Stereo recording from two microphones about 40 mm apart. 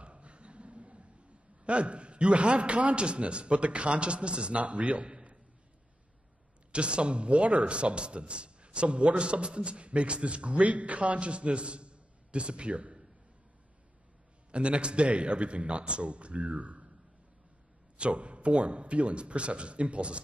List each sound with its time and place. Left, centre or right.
0.0 s a sound: right
1.6 s a man's voice: right
6.7 s a man's voice: right
14.5 s a man's voice: right
17.9 s a man's voice: right